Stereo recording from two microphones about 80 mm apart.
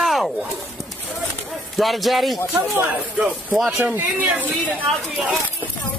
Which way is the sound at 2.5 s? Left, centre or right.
Right.